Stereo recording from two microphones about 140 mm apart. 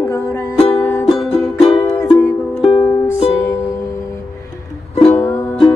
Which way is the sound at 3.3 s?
20° left (ahead or behind).